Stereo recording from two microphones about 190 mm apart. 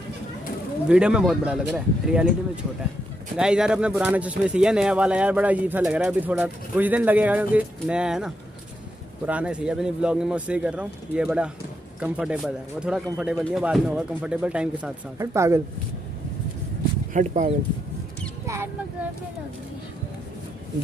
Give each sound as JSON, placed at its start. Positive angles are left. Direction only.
{"t": 0.8, "sound": "speech", "side_deg": -5}
{"t": 17.1, "sound": "speech", "side_deg": -40}
{"t": 18.4, "sound": "a sound", "side_deg": -15}